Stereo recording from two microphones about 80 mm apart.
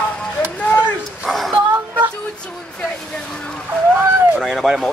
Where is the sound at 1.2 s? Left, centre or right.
Centre.